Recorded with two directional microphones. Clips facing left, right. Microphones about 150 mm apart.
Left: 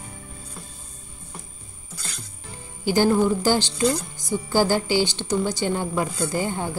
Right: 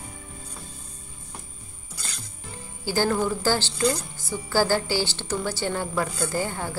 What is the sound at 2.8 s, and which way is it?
A woman's voice, 20° left (ahead or behind).